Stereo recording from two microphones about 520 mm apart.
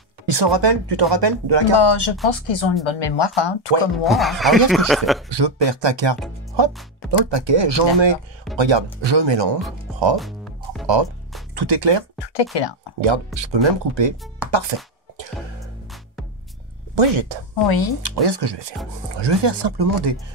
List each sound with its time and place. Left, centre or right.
0.3 s speech: right
1.8 s speech: left
4.0 s a man's voice: centre
5.3 s speech: right
6.5 s music: right
7.2 s speech: right
10.1 s music: centre
11.5 s speech: right
12.5 s speech: left
13.0 s speech: right
15.3 s music: centre
16.9 s speech: right
17.6 s speech: left
18.0 s speech: right